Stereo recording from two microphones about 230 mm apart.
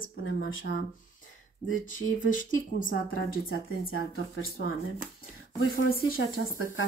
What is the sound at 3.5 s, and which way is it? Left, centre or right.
Speech, left.